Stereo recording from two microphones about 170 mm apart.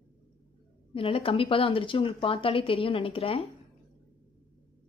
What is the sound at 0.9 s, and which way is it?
Speech, 30° left (ahead or behind).